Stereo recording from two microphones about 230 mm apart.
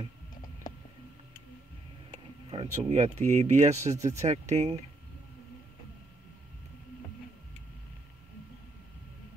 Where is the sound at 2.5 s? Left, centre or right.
Right.